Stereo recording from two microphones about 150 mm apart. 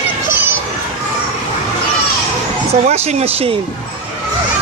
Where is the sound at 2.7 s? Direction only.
45° right (ahead or behind).